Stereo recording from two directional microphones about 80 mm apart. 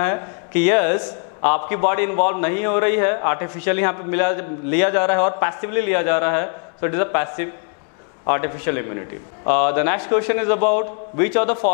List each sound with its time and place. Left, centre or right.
0.0 s a man's voice: centre